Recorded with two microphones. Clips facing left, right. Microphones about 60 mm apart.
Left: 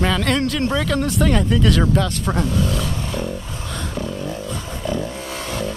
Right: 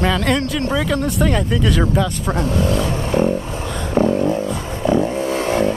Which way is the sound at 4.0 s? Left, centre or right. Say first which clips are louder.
Right 13 dB; right.